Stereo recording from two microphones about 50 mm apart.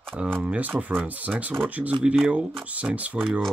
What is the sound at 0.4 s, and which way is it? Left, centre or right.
Speech, right.